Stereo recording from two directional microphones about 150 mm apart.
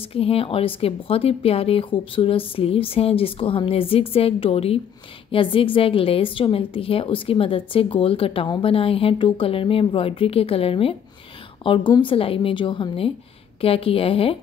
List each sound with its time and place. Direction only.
0.1 s a woman's voice: 40° left (ahead or behind)